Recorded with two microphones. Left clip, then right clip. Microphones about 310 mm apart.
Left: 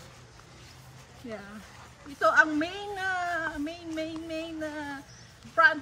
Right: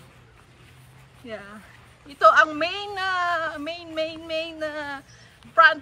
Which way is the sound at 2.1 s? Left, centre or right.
Centre.